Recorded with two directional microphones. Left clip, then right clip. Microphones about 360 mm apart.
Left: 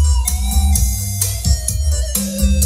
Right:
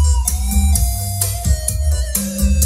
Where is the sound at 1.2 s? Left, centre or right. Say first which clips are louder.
Left 3 dB; centre.